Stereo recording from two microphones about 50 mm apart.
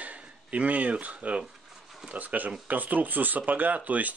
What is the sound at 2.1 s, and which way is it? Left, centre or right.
Speech, right.